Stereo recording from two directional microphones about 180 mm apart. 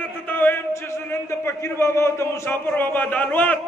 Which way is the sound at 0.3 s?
10° left (ahead or behind).